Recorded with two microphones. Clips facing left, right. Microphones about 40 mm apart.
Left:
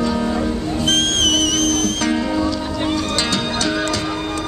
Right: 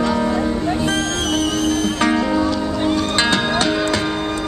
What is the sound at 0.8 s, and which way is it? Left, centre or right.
Music, left.